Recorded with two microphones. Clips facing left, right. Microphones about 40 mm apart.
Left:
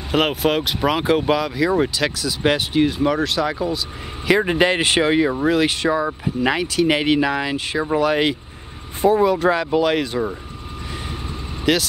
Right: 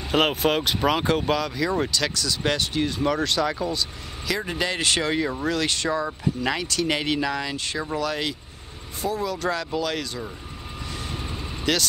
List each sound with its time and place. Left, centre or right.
0.1 s speech: centre
4.3 s speech: left
11.7 s speech: centre